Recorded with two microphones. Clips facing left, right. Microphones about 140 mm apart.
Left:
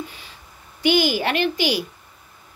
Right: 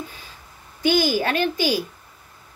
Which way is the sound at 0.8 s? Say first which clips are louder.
Left 1 dB; 15° left (ahead or behind).